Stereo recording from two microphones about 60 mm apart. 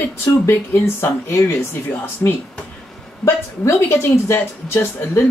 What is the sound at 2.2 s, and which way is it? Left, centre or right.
Speech, left.